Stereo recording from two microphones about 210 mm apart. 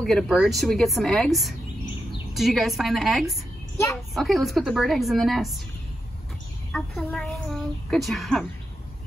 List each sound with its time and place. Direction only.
0.0 s a woman's voice: centre (ahead or behind)
6.7 s a woman's voice: 5° left (ahead or behind)